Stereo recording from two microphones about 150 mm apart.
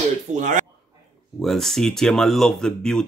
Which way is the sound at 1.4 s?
Centre (ahead or behind).